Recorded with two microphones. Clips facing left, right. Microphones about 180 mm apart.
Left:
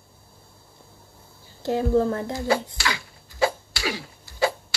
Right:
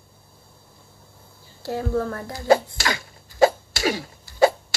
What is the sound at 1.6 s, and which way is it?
Speech, 20° left (ahead or behind).